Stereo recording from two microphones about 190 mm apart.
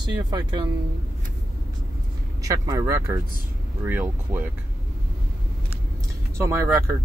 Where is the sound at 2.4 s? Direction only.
15° right (ahead or behind).